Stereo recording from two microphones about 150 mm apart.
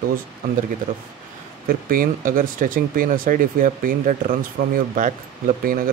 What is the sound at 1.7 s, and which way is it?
Speech, 65° right (ahead or behind).